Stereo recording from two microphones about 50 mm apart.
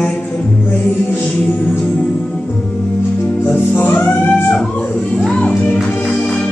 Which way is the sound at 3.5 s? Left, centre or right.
Left.